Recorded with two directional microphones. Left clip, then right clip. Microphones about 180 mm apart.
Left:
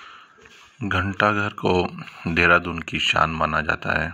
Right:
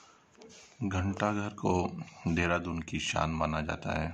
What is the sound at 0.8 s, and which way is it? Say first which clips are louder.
Speech: left 12 dB; 10° left (ahead or behind).